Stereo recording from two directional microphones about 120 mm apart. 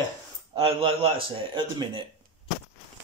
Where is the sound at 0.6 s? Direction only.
50° right (ahead or behind).